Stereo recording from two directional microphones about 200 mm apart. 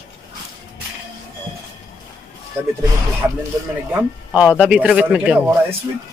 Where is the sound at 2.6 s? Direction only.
10° right (ahead or behind).